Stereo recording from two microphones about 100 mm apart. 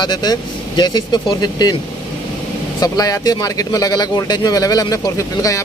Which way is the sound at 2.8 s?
40° left (ahead or behind).